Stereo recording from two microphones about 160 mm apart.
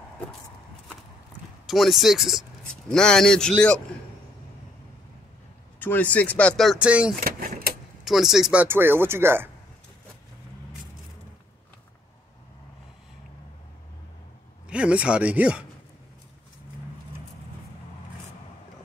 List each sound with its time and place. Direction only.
1.7 s a man's voice: centre (ahead or behind)
5.8 s speech: 10° left (ahead or behind); by 7.2 s 5° right (ahead or behind)
7.2 s vehicle: 65° right (ahead or behind)
8.0 s speech: centre (ahead or behind)
14.7 s speech: 5° right (ahead or behind)